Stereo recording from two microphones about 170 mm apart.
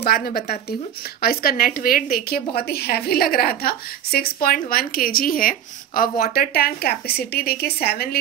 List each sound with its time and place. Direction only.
0.0 s a woman's voice: 65° left (ahead or behind)